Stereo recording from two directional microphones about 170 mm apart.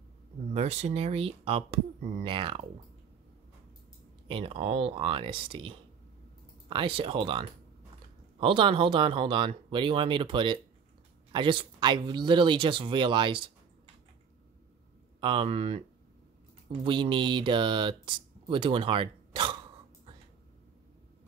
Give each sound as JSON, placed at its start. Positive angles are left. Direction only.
{"t": 0.5, "sound": "speech", "side_deg": -40}
{"t": 4.3, "sound": "speech", "side_deg": -35}
{"t": 15.1, "sound": "speech", "side_deg": -30}
{"t": 16.8, "sound": "speech", "side_deg": -30}